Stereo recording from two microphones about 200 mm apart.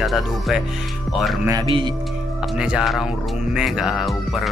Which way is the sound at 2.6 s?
5° right (ahead or behind).